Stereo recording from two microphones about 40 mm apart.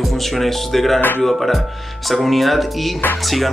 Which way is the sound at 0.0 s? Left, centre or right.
Centre.